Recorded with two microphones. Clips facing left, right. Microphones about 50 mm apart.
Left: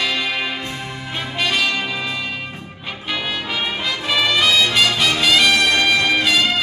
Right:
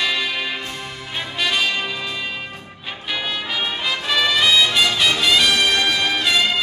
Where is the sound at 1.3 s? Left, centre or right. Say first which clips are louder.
Left 1 dB; centre.